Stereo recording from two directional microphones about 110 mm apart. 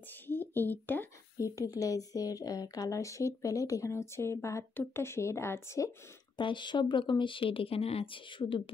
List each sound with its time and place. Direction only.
0.3 s a sound: 20° left (ahead or behind)
1.4 s speech: 30° left (ahead or behind)
6.3 s speech: 45° left (ahead or behind)